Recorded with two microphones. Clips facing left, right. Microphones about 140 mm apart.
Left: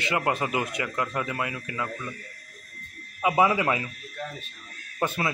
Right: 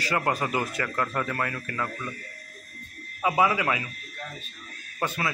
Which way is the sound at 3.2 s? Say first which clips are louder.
Left 1 dB; 20° left (ahead or behind).